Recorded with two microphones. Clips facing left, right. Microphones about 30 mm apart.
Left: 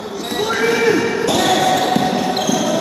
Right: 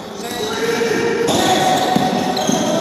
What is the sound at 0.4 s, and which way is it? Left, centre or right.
Basketball bounce, centre.